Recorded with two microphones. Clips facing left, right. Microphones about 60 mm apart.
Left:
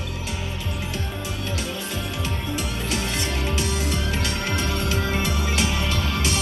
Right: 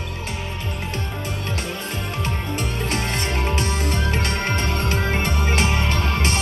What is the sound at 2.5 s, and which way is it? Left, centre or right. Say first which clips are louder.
Music: right 3 dB; right.